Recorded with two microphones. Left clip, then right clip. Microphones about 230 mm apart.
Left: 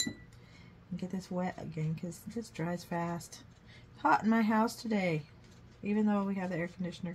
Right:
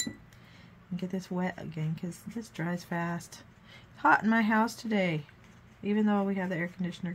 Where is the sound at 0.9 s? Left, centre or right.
Right.